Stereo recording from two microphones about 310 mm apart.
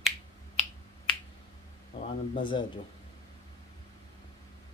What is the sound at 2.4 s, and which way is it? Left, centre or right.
Speech, centre.